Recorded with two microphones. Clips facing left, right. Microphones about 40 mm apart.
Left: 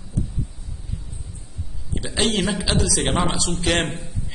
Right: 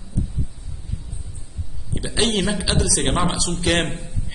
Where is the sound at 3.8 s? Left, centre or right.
Left.